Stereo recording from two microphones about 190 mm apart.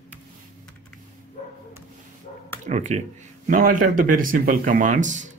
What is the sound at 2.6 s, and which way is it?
Speech, 40° right (ahead or behind).